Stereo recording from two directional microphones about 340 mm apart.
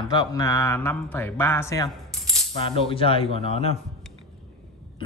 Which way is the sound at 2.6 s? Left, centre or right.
Centre.